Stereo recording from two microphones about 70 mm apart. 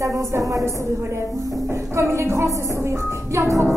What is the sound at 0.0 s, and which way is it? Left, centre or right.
Speech, right.